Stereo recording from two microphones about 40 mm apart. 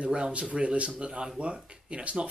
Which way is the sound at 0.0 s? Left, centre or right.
Right.